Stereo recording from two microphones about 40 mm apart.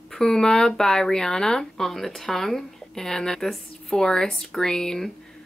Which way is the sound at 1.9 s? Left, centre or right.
Centre.